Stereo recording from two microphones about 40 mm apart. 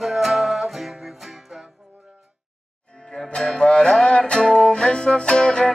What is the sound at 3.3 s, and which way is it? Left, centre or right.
Music, left.